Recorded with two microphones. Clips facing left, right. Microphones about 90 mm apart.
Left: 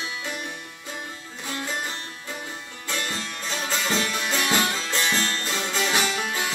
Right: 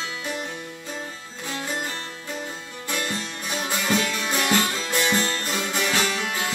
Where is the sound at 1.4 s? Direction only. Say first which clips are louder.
Right 1 dB; 20° right (ahead or behind).